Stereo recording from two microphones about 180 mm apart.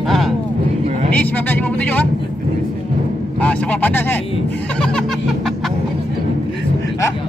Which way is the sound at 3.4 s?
5° left (ahead or behind).